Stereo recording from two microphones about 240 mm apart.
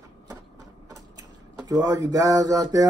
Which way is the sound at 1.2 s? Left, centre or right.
Centre.